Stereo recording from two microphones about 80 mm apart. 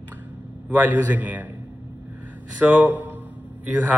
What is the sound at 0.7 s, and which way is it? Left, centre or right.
Speech, right.